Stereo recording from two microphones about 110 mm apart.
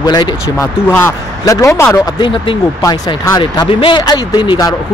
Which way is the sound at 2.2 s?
50° left (ahead or behind).